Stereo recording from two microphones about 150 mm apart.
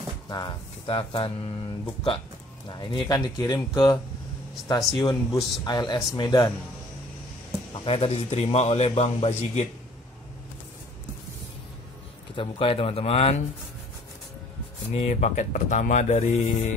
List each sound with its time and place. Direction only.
0.3 s speech: 30° left (ahead or behind)
7.8 s a man's voice: 40° left (ahead or behind)
12.4 s speech: 35° left (ahead or behind)
15.0 s a man's voice: 50° left (ahead or behind)